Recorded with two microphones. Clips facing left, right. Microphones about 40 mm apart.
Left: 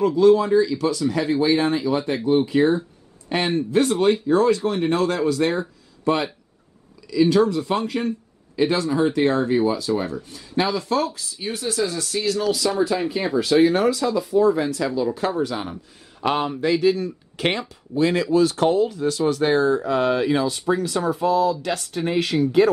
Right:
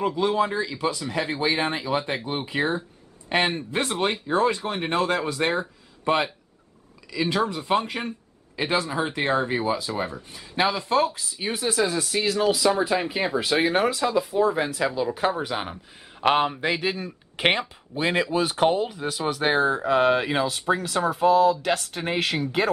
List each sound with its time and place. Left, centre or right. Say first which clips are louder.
0.0 s a man's voice: left 7 dB; right